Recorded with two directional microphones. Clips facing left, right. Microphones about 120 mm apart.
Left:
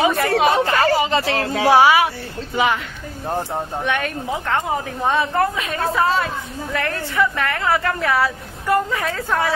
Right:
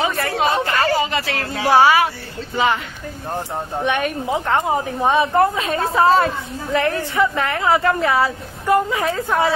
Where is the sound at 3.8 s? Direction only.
20° right (ahead or behind).